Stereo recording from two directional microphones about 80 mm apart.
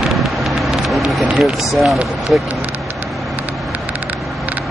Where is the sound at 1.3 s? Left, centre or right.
Centre.